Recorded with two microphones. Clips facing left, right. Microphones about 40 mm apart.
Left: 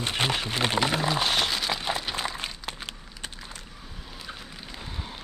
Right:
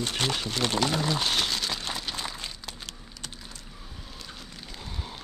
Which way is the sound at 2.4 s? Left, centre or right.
Left.